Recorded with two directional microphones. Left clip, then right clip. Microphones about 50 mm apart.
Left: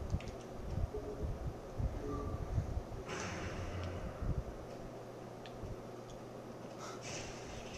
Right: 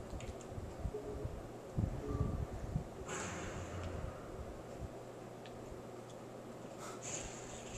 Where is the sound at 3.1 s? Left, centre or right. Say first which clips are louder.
Left 1 dB; centre.